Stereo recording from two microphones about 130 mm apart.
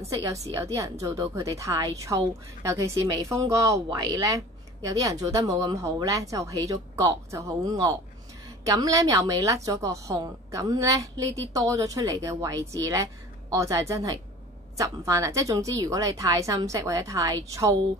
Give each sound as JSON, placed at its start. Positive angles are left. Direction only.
{"t": 0.0, "sound": "a woman's voice", "side_deg": -25}